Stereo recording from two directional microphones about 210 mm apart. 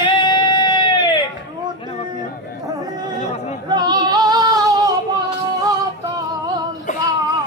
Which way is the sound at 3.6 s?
20° right (ahead or behind).